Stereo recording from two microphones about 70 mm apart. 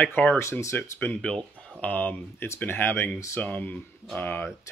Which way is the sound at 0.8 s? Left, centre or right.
Left.